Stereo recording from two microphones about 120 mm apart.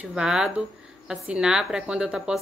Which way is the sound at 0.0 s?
5° right (ahead or behind).